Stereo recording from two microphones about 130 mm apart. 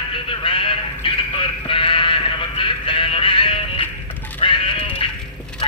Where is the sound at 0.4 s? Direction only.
40° left (ahead or behind).